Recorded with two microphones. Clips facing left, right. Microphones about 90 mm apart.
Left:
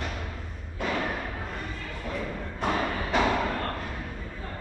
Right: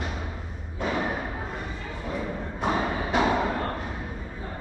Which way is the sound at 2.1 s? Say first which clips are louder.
Right 3 dB; 15° right (ahead or behind).